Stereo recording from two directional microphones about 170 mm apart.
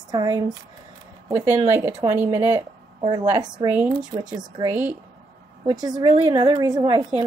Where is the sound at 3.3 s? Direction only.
25° right (ahead or behind).